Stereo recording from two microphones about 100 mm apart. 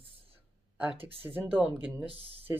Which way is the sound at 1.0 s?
70° right (ahead or behind).